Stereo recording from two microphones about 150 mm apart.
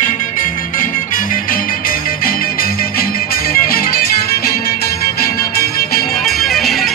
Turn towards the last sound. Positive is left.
turn(degrees=0)  # may be behind; listen again after turning